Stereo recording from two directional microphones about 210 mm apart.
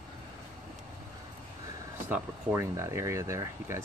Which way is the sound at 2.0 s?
10° right (ahead or behind).